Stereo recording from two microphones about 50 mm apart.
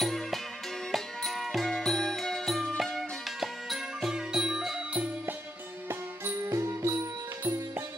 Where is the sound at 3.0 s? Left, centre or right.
Centre.